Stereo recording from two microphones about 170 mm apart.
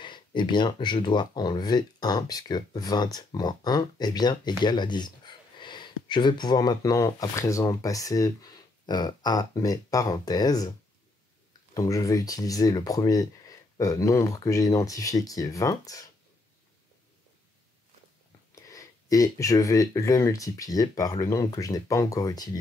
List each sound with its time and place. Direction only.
0.0 s speech: 25° left (ahead or behind)
11.7 s speech: 20° left (ahead or behind)
18.5 s speech: 20° left (ahead or behind)